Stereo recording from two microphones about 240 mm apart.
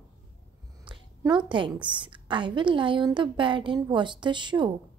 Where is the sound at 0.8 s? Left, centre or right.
Centre.